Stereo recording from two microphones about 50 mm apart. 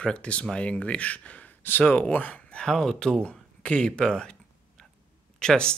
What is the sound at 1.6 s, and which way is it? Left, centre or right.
Speech, left.